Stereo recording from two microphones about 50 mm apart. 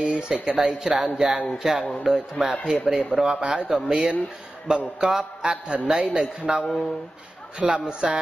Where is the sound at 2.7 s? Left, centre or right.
Centre.